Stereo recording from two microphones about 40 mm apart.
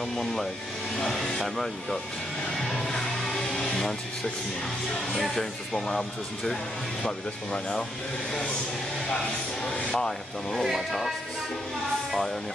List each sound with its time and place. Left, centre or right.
0.2 s speech: centre
2.5 s music: centre
5.1 s speech: centre
9.9 s speech: centre
10.6 s speech: centre